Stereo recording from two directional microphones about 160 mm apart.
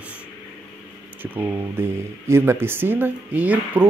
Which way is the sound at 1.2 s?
10° right (ahead or behind).